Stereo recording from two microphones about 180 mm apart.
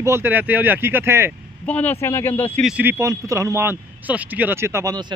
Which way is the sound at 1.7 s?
10° left (ahead or behind).